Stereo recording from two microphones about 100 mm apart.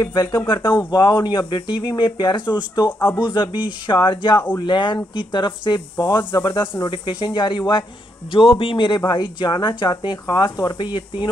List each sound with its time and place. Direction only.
0.0 s speech: 45° left (ahead or behind)
5.9 s speech: 35° left (ahead or behind)
8.3 s speech: 60° left (ahead or behind)